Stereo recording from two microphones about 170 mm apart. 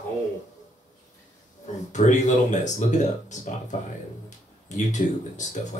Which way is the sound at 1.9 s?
45° left (ahead or behind).